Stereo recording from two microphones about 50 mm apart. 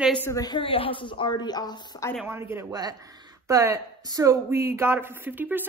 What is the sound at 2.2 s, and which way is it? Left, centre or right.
Speech, right.